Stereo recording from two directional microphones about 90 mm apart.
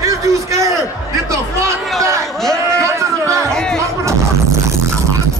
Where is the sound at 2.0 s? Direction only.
35° right (ahead or behind).